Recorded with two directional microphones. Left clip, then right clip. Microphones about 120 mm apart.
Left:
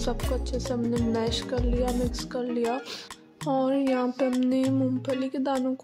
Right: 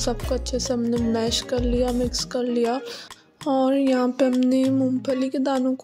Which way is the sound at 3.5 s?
35° right (ahead or behind).